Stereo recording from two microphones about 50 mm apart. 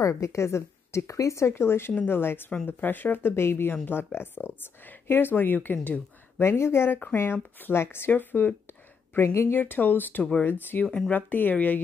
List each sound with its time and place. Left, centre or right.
0.1 s speech: left
6.4 s speech: left
6.9 s speech: left
7.6 s speech: left
8.1 s speech: left
9.1 s speech: left
9.6 s speech: left